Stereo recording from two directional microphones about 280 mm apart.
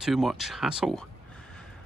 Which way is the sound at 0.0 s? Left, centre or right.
Centre.